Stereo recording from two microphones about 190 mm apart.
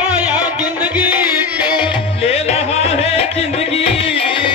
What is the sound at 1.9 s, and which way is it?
Music, 30° left (ahead or behind).